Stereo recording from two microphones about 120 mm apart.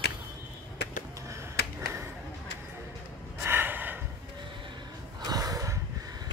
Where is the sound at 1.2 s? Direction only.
25° right (ahead or behind).